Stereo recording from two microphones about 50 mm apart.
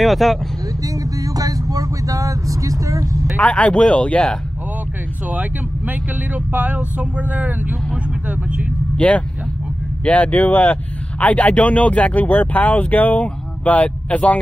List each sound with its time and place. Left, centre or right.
0.0 s speech: centre
2.1 s vehicle: right
3.3 s speech: left
5.3 s speech: right
8.3 s vehicle: right
8.9 s speech: left